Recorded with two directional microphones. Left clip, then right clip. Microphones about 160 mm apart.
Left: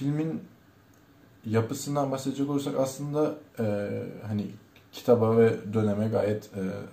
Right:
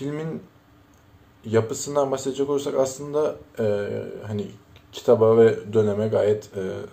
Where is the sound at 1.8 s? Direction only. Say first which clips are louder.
Right 6 dB; 15° right (ahead or behind).